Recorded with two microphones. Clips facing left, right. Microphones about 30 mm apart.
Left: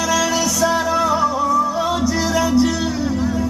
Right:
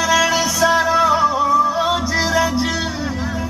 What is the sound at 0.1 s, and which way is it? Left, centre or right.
Music, right.